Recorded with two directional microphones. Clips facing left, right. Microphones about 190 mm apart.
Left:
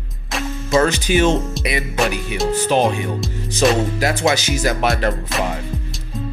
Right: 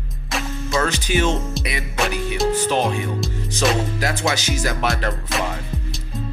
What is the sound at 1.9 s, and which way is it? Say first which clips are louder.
Music: even; centre (ahead or behind).